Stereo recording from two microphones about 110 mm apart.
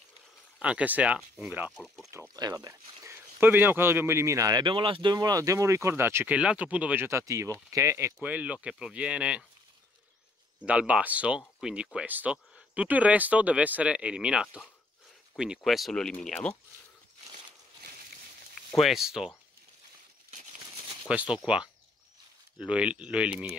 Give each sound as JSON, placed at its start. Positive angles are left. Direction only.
{"t": 0.6, "sound": "speech", "side_deg": -10}
{"t": 2.3, "sound": "speech", "side_deg": -35}
{"t": 3.3, "sound": "speech", "side_deg": -20}
{"t": 7.1, "sound": "speech", "side_deg": -25}
{"t": 10.6, "sound": "speech", "side_deg": -10}
{"t": 18.7, "sound": "speech", "side_deg": 0}
{"t": 21.1, "sound": "speech", "side_deg": -10}
{"t": 22.7, "sound": "speech", "side_deg": -10}